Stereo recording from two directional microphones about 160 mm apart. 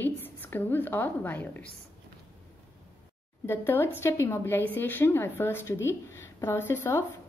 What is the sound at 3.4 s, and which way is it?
A woman's voice, 15° left (ahead or behind).